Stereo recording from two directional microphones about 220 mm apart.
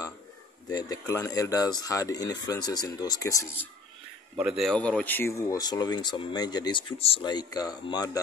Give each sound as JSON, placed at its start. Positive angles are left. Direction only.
{"t": 0.7, "sound": "speech", "side_deg": 15}
{"t": 4.4, "sound": "speech", "side_deg": -5}